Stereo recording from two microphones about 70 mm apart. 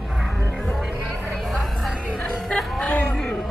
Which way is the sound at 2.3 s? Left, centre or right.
Centre.